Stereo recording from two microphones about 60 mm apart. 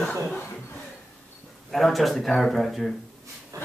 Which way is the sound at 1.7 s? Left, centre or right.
Centre.